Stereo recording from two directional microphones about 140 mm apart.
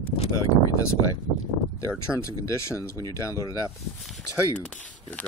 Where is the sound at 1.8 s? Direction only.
20° left (ahead or behind).